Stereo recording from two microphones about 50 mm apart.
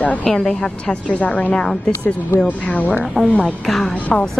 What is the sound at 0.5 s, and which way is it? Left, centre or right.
Speech, centre.